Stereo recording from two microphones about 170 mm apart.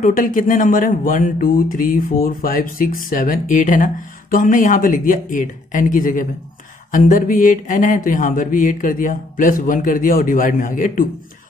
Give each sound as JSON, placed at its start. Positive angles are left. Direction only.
{"t": 0.0, "sound": "speech", "side_deg": 50}